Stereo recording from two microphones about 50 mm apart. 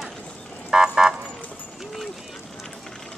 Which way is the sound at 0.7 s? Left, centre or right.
Centre.